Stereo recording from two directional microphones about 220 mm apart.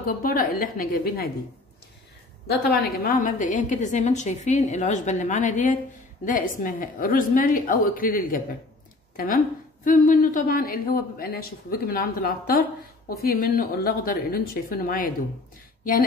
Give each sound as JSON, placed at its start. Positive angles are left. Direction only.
{"t": 0.0, "sound": "a woman's voice", "side_deg": 40}
{"t": 2.4, "sound": "a woman's voice", "side_deg": 45}